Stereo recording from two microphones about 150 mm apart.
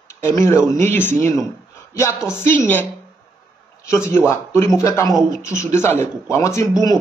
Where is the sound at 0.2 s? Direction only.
20° left (ahead or behind).